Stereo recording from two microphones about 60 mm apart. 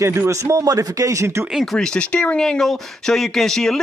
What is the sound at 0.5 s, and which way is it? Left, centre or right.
Speech, right.